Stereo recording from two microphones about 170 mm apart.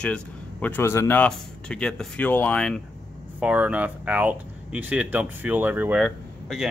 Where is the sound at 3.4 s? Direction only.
5° right (ahead or behind).